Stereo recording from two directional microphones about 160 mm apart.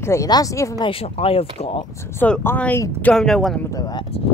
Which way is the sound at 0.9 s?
40° left (ahead or behind).